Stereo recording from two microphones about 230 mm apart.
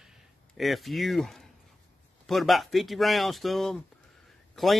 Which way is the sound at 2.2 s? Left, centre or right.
Centre.